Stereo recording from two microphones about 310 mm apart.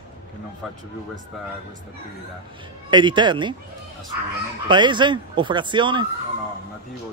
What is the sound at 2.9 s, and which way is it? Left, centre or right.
Speech, centre.